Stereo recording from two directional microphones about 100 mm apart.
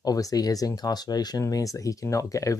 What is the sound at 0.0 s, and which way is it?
Speech, 35° left (ahead or behind).